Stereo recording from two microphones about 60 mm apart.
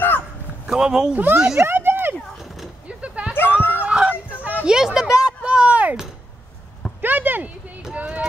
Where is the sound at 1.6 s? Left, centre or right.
Right.